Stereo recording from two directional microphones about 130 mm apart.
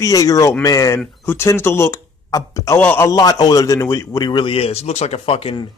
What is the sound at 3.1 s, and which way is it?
A man's voice, 30° left (ahead or behind).